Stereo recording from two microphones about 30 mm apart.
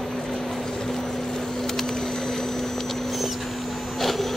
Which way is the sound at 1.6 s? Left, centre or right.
Centre.